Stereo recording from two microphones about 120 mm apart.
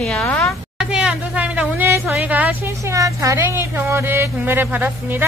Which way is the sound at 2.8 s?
25° right (ahead or behind).